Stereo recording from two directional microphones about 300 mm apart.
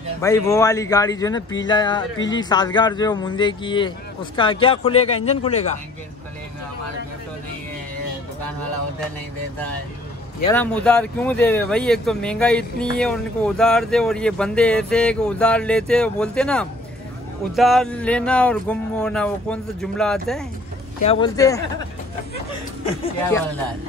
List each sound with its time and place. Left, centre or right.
0.2 s speech: centre
10.5 s speech: centre
21.0 s speech: centre